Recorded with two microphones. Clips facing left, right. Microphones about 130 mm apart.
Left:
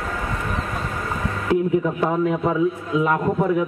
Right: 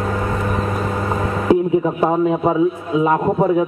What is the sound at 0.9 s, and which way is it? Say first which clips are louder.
A man's voice: right 6 dB; 35° right (ahead or behind).